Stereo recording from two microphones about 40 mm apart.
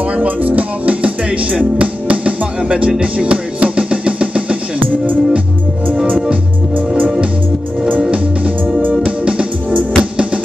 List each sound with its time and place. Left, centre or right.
0.1 s music: right
6.0 s music: right
9.2 s music: right